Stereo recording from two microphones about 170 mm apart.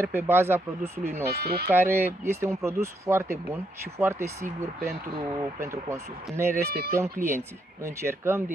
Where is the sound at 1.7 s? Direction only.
15° right (ahead or behind).